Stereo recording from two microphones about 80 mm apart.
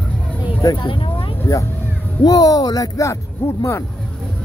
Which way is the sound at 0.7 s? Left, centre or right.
Left.